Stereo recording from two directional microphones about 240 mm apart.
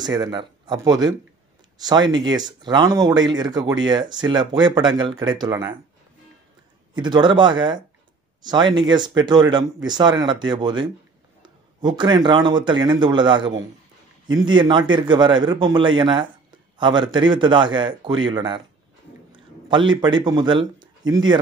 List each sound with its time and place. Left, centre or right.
0.0 s speech: centre
6.9 s a man's voice: centre